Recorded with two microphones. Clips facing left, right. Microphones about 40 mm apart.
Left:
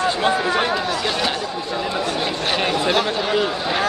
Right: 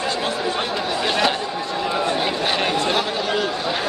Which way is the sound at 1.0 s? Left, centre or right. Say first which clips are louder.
Right 2 dB; centre.